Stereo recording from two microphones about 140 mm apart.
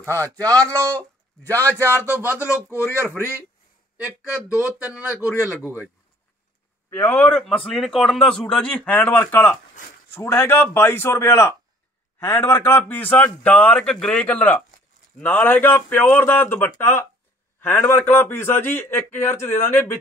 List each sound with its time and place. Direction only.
0.6 s a man's voice: 10° left (ahead or behind)
2.1 s speech: 15° right (ahead or behind)
2.4 s speech: 20° left (ahead or behind)
3.0 s speech: 15° right (ahead or behind)
4.6 s speech: 10° right (ahead or behind)
6.9 s a man's voice: 15° left (ahead or behind)